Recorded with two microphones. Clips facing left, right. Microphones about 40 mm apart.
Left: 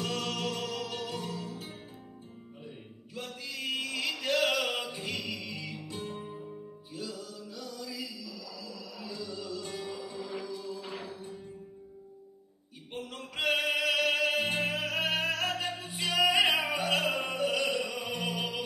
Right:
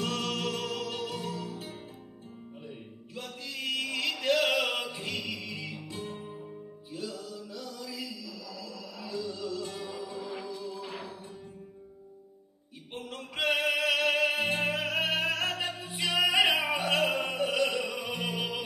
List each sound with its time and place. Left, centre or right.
0.0 s music: centre
3.2 s music: centre
3.8 s a sound: centre
4.8 s music: centre
5.3 s music: right
5.8 s music: centre
10.4 s music: right
10.9 s music: centre
13.4 s chant: centre
14.4 s music: centre
16.6 s music: centre